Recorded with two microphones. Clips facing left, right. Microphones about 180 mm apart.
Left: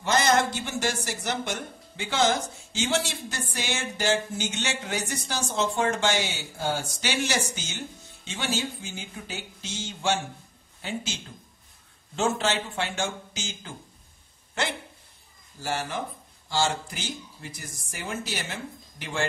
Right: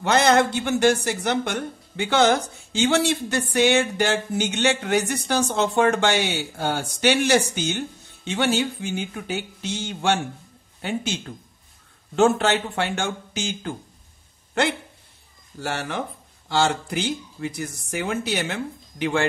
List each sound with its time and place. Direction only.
0.0 s speech: 60° right (ahead or behind)
15.6 s speech: 65° right (ahead or behind)